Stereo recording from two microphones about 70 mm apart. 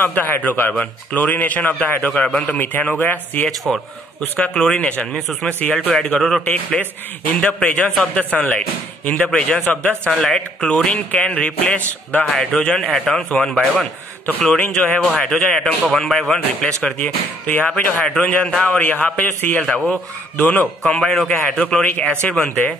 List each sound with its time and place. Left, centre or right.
0.0 s a man's voice: left
2.6 s a man's voice: left
3.4 s speech: centre
6.4 s a man's voice: left
12.3 s speech: centre
14.6 s a man's voice: left
15.0 s speech: centre
16.8 s a man's voice: left
21.0 s speech: centre